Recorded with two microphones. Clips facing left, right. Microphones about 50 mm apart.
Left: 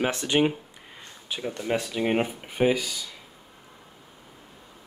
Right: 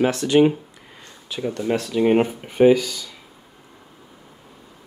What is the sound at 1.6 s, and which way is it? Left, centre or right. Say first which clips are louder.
Speech: right 6 dB; centre.